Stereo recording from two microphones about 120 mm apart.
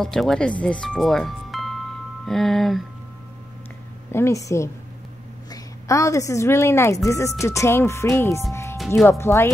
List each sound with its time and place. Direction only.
0.0 s speech: 5° left (ahead or behind)
4.1 s a woman's voice: 25° left (ahead or behind)
8.7 s music: centre (ahead or behind)
9.2 s speech: 20° left (ahead or behind)